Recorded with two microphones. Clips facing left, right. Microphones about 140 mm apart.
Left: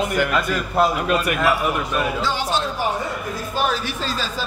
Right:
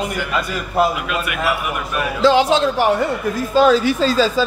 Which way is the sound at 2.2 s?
90° right.